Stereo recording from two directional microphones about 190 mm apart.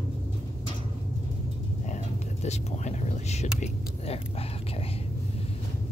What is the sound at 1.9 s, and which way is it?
Speech, 35° left (ahead or behind).